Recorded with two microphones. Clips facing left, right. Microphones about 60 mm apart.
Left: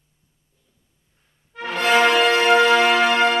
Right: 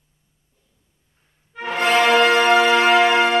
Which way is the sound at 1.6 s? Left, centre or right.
Centre.